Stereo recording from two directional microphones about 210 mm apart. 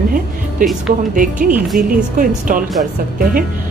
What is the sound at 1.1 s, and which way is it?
Speech, 40° right (ahead or behind).